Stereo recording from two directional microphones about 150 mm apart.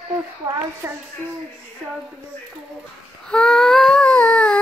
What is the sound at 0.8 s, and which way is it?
Speech, 10° right (ahead or behind).